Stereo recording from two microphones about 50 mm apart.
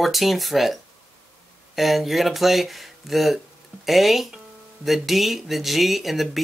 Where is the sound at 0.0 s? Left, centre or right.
Centre.